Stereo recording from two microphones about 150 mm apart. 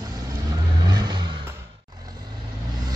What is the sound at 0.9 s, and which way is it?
Vehicle, 30° right (ahead or behind).